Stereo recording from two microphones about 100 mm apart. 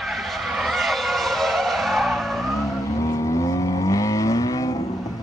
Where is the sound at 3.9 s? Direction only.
35° left (ahead or behind).